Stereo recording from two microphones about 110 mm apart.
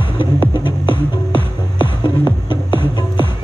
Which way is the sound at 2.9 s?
45° left (ahead or behind).